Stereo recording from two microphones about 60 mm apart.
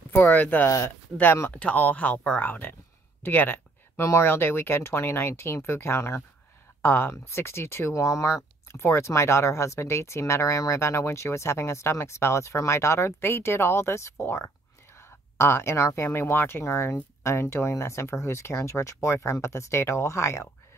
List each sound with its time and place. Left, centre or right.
0.1 s speech: left
0.7 s speech: left
1.5 s speech: left
3.2 s a sound: left
4.1 s speech: left